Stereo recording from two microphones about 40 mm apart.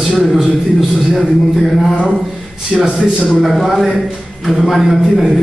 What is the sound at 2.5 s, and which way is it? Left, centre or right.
A man's voice, centre.